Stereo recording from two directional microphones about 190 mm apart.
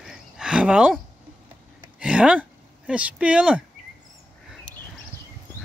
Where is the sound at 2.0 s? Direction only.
5° right (ahead or behind).